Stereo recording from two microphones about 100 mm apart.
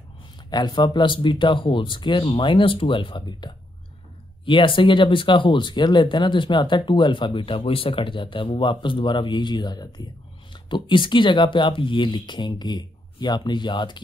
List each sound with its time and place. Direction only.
0.5 s speech: 45° left (ahead or behind)